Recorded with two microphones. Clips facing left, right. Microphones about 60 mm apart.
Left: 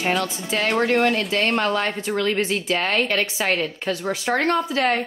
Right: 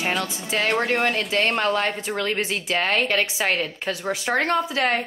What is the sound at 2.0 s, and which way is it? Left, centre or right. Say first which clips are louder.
Speech: left 3 dB; centre.